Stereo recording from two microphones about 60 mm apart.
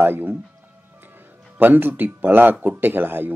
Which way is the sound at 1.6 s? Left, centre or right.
Right.